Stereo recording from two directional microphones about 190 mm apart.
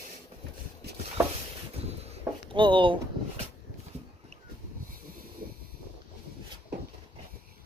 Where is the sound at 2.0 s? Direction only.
30° right (ahead or behind).